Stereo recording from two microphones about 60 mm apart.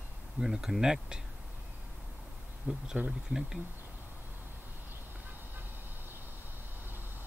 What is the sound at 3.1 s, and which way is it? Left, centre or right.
Speech, centre.